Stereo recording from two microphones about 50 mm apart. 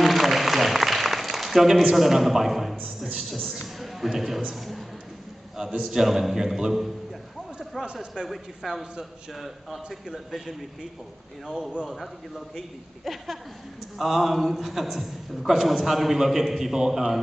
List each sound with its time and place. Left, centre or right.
0.0 s applause: centre
3.6 s a man's voice: centre
5.6 s a man's voice: centre
5.9 s a man's voice: centre
7.8 s a man's voice: centre
8.1 s a man's voice: centre
11.9 s a man's voice: centre